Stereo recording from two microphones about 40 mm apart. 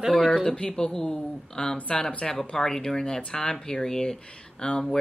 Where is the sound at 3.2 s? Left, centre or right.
Left.